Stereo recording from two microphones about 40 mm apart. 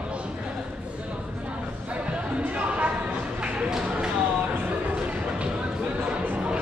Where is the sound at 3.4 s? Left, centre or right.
Right.